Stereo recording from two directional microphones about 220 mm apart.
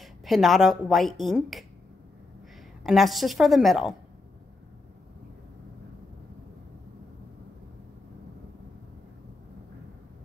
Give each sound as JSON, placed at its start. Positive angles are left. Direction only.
{"t": 0.0, "sound": "speech", "side_deg": 0}
{"t": 2.8, "sound": "a woman's voice", "side_deg": 0}